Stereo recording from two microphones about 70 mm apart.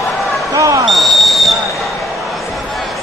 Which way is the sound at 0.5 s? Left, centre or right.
Right.